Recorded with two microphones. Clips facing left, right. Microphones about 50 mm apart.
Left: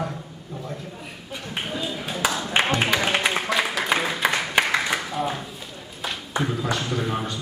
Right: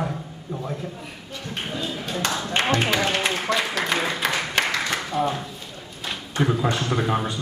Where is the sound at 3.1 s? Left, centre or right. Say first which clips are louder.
Left 1 dB; centre.